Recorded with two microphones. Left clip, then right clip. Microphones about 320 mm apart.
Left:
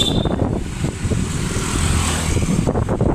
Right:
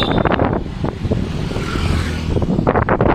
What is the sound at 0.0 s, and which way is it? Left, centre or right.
Wind noise, right.